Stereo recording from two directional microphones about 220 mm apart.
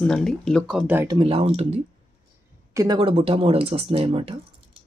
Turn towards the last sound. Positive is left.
turn(degrees=-25)  # may be behind; listen again after turning